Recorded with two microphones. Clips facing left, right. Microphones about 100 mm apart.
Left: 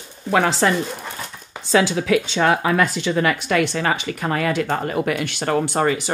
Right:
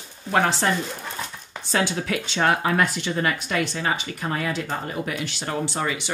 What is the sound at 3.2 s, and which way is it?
A woman's voice, 75° left (ahead or behind).